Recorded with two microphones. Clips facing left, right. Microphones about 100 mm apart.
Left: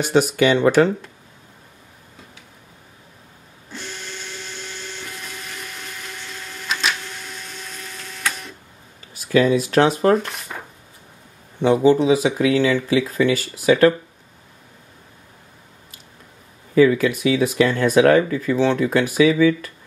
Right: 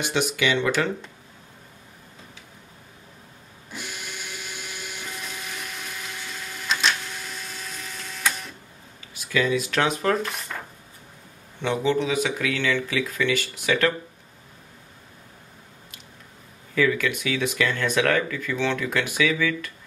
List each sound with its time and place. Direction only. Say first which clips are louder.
0.0 s speech: left 8 dB; 45° left (ahead or behind)
3.7 s printer: left 2 dB; 10° right (ahead or behind)
9.1 s speech: left 7 dB; 40° left (ahead or behind)
10.1 s speech: left 6 dB; centre (ahead or behind)
11.6 s speech: left 9 dB; 30° left (ahead or behind)
16.7 s speech: left 8 dB; 30° left (ahead or behind)